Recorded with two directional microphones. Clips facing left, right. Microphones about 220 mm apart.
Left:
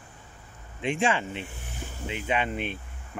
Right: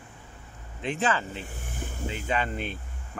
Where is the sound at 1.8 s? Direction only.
50° right (ahead or behind).